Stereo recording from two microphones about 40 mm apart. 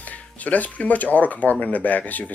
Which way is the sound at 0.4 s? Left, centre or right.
Left.